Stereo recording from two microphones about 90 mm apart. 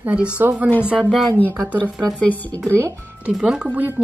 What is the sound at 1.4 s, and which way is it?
A woman's voice, 20° left (ahead or behind).